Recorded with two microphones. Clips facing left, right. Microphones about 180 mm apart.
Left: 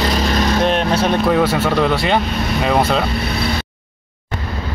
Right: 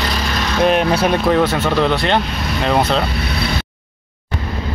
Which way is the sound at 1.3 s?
10° left (ahead or behind).